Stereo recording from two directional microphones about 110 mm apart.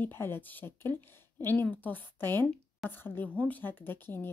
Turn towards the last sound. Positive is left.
turn(degrees=20)  # may be behind; listen again after turning